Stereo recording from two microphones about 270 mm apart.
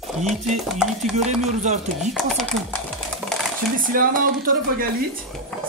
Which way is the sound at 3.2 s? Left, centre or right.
Centre.